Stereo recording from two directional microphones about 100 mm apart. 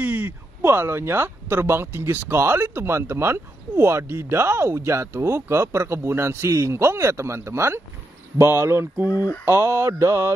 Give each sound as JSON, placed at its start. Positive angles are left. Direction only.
{"t": 0.0, "sound": "speech", "side_deg": -20}
{"t": 9.0, "sound": "speech", "side_deg": 40}
{"t": 9.4, "sound": "speech", "side_deg": -25}